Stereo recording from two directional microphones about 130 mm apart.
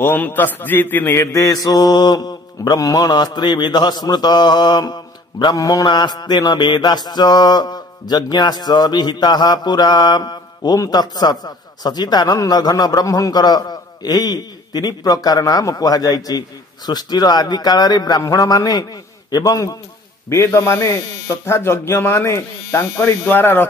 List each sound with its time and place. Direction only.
0.0 s mantra: 15° left (ahead or behind)
19.3 s a man's voice: 30° left (ahead or behind)